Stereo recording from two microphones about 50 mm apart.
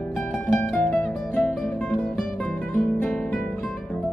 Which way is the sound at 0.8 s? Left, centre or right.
Left.